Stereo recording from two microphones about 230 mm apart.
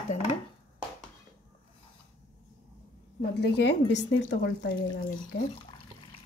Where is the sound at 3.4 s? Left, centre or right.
Left.